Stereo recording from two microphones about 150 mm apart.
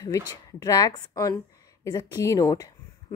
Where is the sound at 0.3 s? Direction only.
25° left (ahead or behind).